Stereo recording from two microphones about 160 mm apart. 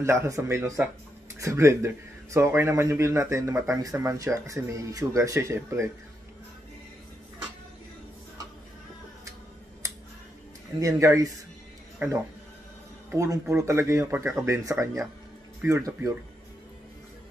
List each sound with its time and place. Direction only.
0.0 s speech: 15° right (ahead or behind)
10.8 s speech: 20° right (ahead or behind)